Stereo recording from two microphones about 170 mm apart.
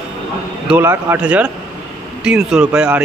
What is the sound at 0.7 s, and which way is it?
Speech, 10° right (ahead or behind).